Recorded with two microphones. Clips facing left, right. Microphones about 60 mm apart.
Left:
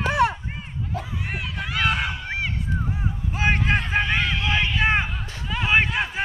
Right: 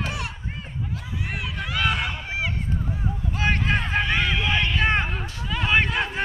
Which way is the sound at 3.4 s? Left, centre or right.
Centre.